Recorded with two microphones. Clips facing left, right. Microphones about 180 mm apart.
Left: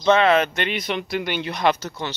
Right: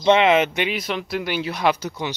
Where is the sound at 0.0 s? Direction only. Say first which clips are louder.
Right 1 dB; 20° right (ahead or behind).